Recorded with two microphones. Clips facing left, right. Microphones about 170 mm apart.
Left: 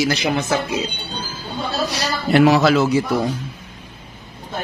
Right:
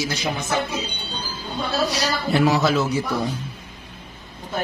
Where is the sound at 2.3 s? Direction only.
80° left.